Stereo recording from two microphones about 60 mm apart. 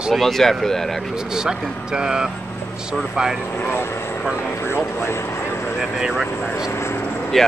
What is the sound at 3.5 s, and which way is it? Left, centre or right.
Speech, left.